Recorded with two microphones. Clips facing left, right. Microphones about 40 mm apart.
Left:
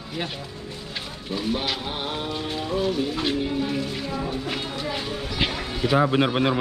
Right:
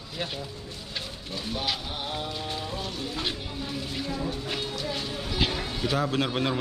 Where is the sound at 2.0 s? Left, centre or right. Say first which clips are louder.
Left 4 dB; left.